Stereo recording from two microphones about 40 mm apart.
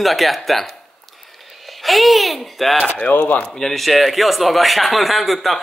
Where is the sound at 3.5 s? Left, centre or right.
Centre.